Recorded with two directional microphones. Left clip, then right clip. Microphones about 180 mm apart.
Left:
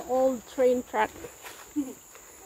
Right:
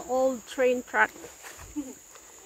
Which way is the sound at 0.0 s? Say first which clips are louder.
Left 1 dB; 20° right (ahead or behind).